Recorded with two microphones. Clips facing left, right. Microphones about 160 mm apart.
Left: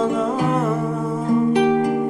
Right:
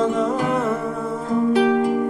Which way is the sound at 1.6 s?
20° left (ahead or behind).